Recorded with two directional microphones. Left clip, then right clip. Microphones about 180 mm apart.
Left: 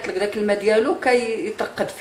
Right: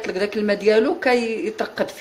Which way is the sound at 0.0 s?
55° right (ahead or behind).